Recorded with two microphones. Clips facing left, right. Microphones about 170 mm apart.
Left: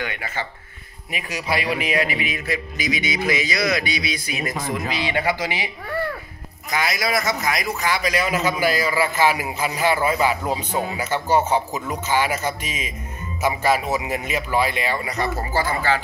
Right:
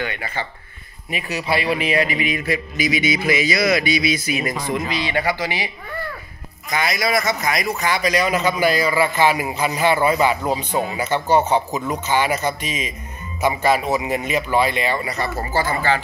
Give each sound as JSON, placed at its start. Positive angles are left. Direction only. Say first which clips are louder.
{"t": 0.0, "sound": "speech", "louder": "right 2 dB", "side_deg": 10}
{"t": 1.8, "sound": "a man's voice", "louder": "right 3 dB", "side_deg": 10}
{"t": 4.9, "sound": "speech", "louder": "right 1 dB", "side_deg": 15}
{"t": 6.7, "sound": "a man's voice", "louder": "right 2 dB", "side_deg": 5}